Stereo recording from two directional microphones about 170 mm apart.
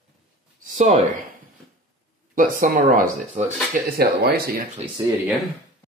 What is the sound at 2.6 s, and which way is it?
Speech, 50° right (ahead or behind).